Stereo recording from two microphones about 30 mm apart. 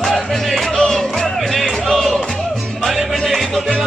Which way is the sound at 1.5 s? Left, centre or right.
Centre.